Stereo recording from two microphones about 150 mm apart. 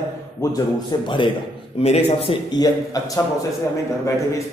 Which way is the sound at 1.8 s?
45° left (ahead or behind).